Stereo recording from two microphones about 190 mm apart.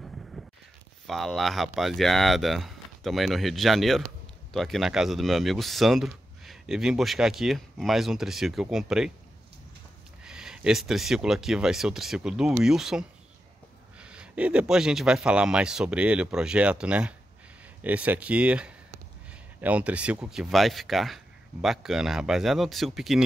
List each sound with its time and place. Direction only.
1.0 s speech: centre (ahead or behind)
10.2 s speech: 5° right (ahead or behind)